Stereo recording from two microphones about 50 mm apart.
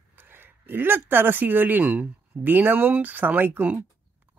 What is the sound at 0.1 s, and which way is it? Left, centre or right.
Speech, right.